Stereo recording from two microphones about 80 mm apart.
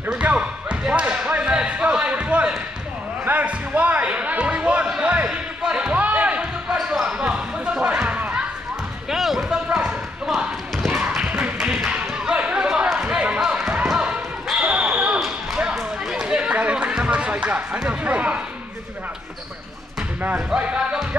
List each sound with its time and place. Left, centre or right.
0.0 s basketball bounce: centre
3.3 s speech: centre
4.8 s music: centre
6.8 s basketball bounce: centre
9.1 s a sound: centre
9.7 s basketball bounce: centre
10.9 s a sound: centre
12.1 s basketball bounce: centre
15.7 s chatter: centre
20.0 s music: centre